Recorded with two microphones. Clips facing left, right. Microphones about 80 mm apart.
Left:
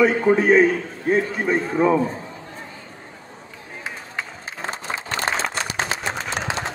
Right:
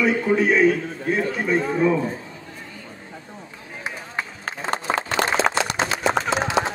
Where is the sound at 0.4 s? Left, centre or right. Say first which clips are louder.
Left 1 dB; left.